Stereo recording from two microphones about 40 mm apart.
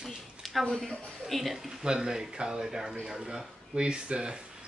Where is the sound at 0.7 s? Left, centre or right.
Centre.